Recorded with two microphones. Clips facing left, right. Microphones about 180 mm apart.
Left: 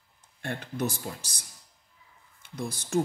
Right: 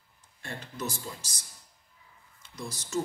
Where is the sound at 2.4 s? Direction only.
55° left (ahead or behind).